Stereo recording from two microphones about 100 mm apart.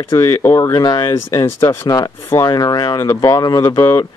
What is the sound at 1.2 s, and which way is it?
Speech, 25° left (ahead or behind).